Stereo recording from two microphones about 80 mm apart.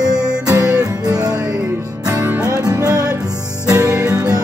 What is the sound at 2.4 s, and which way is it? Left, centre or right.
Music, right.